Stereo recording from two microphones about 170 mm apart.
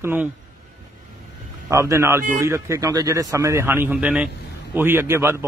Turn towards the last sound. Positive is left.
turn(degrees=-15)  # may be behind; listen again after turning